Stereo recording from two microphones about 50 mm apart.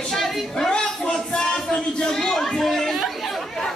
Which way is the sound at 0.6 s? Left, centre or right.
Centre.